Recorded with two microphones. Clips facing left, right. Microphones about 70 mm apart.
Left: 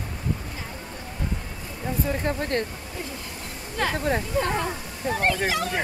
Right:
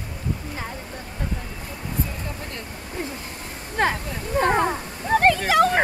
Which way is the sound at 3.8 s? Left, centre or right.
Right.